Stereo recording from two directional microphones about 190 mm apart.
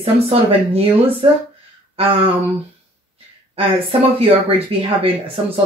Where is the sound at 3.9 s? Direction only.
30° right (ahead or behind).